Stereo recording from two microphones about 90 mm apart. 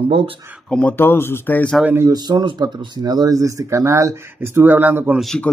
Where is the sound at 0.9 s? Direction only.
25° left (ahead or behind).